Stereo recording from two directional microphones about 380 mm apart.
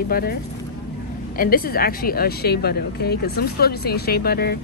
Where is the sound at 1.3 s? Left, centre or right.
Left.